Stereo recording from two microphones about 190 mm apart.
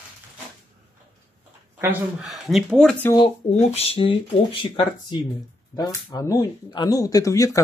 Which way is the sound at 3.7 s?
30° left (ahead or behind).